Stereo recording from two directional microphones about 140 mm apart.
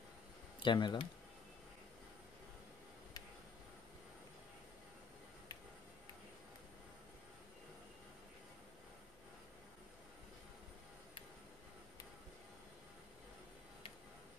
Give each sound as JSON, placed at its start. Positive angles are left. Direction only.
{"t": 0.6, "sound": "speech", "side_deg": 35}